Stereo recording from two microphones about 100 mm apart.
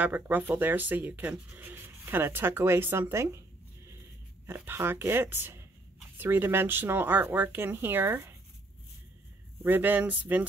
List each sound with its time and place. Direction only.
0.0 s speech: 15° right (ahead or behind)
4.5 s speech: 25° right (ahead or behind)
9.6 s speech: 20° right (ahead or behind)